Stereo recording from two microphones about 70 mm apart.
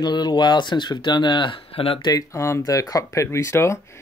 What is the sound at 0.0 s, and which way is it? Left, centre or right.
Speech, left.